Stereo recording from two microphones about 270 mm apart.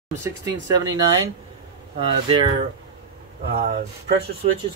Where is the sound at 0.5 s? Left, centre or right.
Centre.